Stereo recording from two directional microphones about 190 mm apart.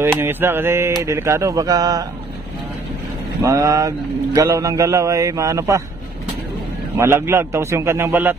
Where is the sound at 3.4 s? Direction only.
20° right (ahead or behind).